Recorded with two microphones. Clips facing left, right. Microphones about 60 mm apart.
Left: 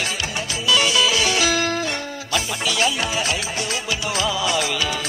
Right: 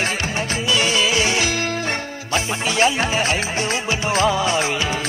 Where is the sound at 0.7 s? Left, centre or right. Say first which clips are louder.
Left 1 dB; right.